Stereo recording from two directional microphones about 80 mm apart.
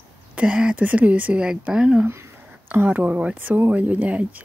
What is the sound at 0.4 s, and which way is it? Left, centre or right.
Speech, centre.